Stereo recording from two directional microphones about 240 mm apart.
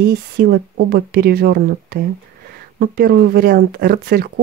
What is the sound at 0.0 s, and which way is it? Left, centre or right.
Speech, right.